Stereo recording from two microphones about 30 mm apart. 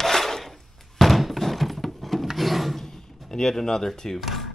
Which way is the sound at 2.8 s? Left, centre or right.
Centre.